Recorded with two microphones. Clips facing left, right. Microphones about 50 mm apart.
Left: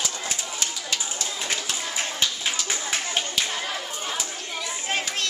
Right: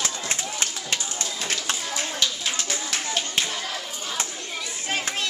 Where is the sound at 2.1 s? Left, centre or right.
Centre.